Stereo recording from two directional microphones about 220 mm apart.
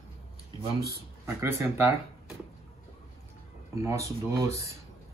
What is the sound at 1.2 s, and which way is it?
Speech, 10° right (ahead or behind).